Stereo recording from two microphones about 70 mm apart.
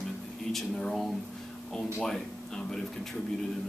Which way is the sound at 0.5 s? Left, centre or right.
Centre.